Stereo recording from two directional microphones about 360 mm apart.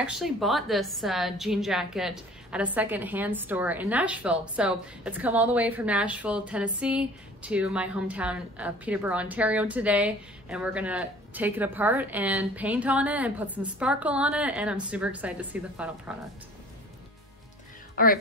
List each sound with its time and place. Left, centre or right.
0.0 s a woman's voice: centre
17.9 s speech: left